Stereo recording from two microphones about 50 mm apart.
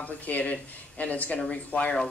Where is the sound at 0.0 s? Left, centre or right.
Left.